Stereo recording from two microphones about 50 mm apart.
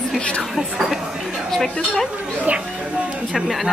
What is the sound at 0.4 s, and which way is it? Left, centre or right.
Speech, centre.